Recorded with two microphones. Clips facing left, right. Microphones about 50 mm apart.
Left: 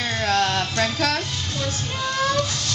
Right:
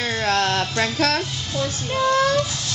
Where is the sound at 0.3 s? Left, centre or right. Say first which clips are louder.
Even; centre.